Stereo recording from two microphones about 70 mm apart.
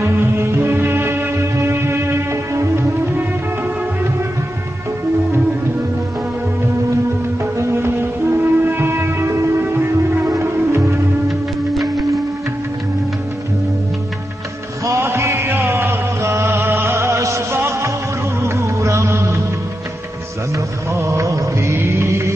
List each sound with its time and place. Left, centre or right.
0.0 s music: right
7.5 s music: right
10.3 s music: right
15.0 s music: right
20.9 s music: right